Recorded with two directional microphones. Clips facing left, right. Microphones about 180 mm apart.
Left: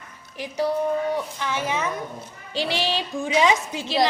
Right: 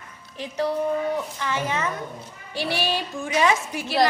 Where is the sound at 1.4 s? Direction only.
15° left (ahead or behind).